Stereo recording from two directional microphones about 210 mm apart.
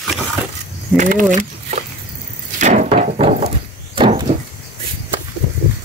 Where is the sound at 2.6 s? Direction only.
35° right (ahead or behind).